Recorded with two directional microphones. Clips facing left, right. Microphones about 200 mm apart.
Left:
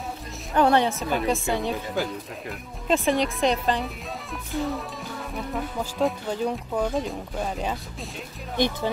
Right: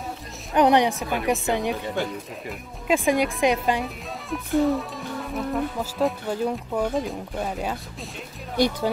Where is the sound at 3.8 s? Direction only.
Centre (ahead or behind).